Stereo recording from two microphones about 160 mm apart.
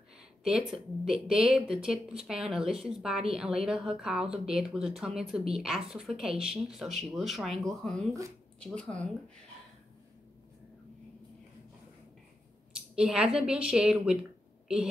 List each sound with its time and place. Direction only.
0.4 s speech: 5° right (ahead or behind)
12.9 s speech: 5° right (ahead or behind)